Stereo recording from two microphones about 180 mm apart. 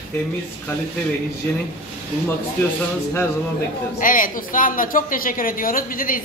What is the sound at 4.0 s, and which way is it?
A woman's voice, 50° left (ahead or behind).